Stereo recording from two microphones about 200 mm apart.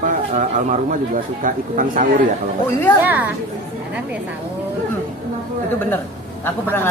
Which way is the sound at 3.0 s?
10° right (ahead or behind).